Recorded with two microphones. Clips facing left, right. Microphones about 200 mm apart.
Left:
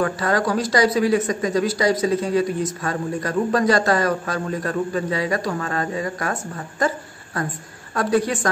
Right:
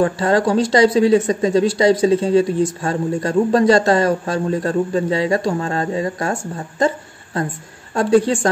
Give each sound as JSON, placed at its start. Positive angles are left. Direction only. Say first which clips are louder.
{"t": 0.0, "sound": "a woman's voice", "louder": "right 5 dB", "side_deg": -30}